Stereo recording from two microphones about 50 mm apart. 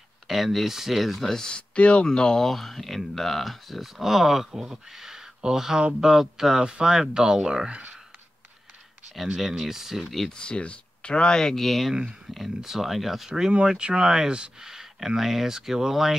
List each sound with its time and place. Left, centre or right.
0.3 s speech: centre
1.3 s speech: centre
9.4 s speech: centre
10.3 s speech: left; by 11.9 s centre
11.9 s speech: centre
12.5 s speech: centre
13.7 s speech: centre